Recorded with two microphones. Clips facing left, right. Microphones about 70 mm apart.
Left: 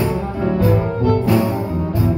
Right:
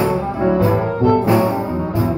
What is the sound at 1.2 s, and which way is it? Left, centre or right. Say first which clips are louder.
Music: right 2 dB; right.